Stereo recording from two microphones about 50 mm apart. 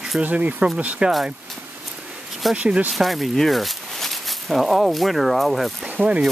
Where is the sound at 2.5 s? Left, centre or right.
Right.